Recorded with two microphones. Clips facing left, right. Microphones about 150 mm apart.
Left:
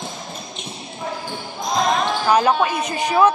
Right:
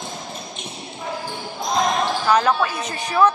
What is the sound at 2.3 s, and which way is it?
Speech, 15° left (ahead or behind).